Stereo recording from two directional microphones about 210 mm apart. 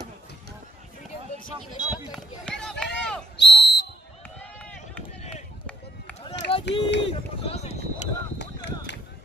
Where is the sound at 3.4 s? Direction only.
55° left (ahead or behind).